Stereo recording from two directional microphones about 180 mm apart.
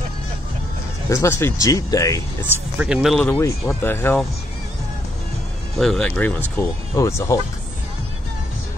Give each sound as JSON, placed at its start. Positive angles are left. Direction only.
{"t": 1.0, "sound": "speech", "side_deg": 15}
{"t": 2.8, "sound": "speech", "side_deg": -5}
{"t": 3.3, "sound": "speech", "side_deg": 15}
{"t": 5.8, "sound": "speech", "side_deg": 5}